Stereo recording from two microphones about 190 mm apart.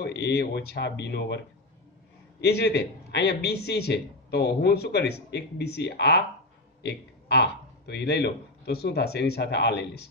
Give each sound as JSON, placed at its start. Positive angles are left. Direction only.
{"t": 0.0, "sound": "a man's voice", "side_deg": 60}
{"t": 2.4, "sound": "a man's voice", "side_deg": 60}